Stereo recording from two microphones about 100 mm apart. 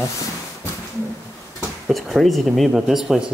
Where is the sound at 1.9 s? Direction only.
Centre (ahead or behind).